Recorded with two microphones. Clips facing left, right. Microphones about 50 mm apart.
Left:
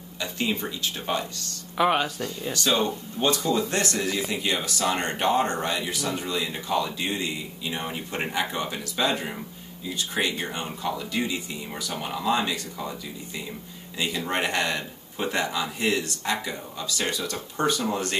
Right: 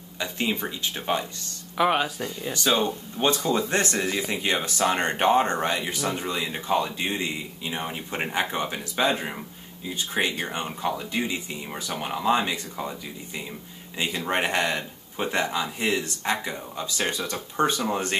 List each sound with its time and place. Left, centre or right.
0.2 s speech: centre
1.8 s speech: centre; by 7.8 s right
7.8 s speech: centre
8.3 s speech: right